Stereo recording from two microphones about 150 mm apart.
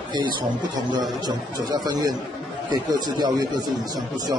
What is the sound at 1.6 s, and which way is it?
A man's voice, 25° right (ahead or behind).